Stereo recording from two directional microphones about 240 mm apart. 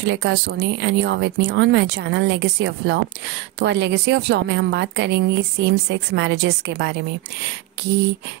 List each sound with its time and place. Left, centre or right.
0.0 s a woman's voice: right